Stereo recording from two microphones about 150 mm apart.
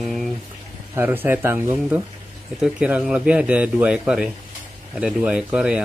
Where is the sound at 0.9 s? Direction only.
15° right (ahead or behind).